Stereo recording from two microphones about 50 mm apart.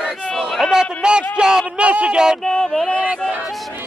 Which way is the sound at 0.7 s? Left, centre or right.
Centre.